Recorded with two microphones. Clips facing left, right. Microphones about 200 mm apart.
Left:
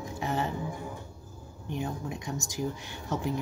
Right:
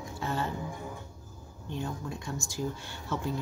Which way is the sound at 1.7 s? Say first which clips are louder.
Left 2 dB; 15° left (ahead or behind).